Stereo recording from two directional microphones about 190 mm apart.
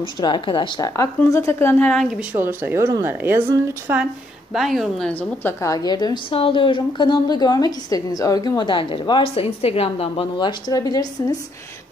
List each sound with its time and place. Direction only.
0.0 s a woman's voice: 25° left (ahead or behind); by 2.2 s centre (ahead or behind)
2.3 s a woman's voice: 10° right (ahead or behind); by 11.3 s 20° left (ahead or behind)